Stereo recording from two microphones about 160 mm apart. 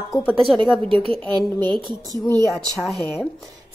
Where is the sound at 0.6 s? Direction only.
30° right (ahead or behind).